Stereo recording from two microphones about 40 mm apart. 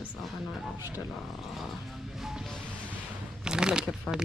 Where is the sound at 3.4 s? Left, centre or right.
Centre.